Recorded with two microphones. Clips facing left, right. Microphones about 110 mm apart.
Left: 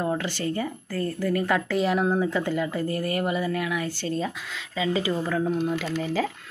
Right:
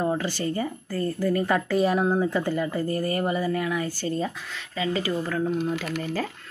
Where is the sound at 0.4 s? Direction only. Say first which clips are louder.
Right 1 dB; 5° right (ahead or behind).